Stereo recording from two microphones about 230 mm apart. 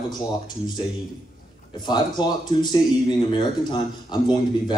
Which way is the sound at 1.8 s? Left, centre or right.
Centre.